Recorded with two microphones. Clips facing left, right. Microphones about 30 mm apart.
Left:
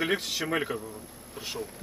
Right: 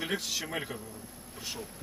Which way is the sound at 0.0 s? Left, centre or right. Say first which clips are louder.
Left 5 dB; left.